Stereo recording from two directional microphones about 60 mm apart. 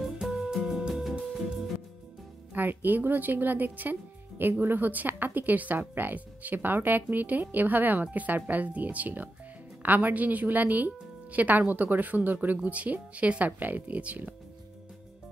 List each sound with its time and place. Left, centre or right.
0.0 s music: centre
1.2 s music: centre
2.5 s a woman's voice: right